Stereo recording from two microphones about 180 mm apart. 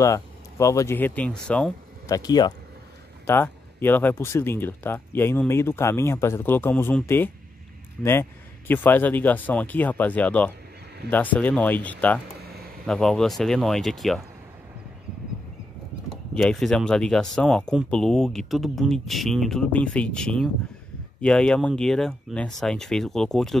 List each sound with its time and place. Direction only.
0.0 s speech: 15° left (ahead or behind)
2.0 s speech: 20° left (ahead or behind)
3.3 s speech: 10° left (ahead or behind)
16.3 s speech: 5° left (ahead or behind)